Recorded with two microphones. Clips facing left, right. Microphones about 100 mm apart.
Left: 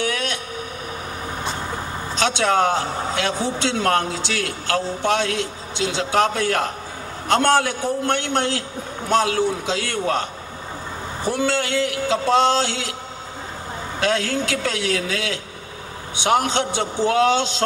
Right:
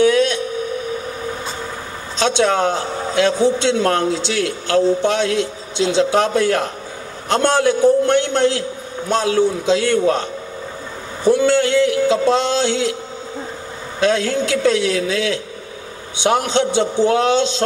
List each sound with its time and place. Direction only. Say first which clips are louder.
0.1 s a sound: right 10 dB; 20° right (ahead or behind)
2.1 s a man's voice: right 3 dB; 20° right (ahead or behind)
11.2 s a man's voice: right 8 dB; 20° right (ahead or behind)
13.9 s a man's voice: right 5 dB; 20° right (ahead or behind)